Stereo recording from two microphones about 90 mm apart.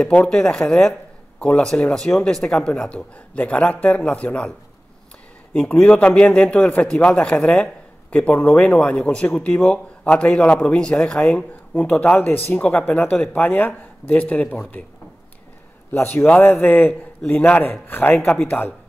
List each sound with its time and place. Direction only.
0.0 s a man's voice: 10° left (ahead or behind)
15.9 s speech: 25° left (ahead or behind)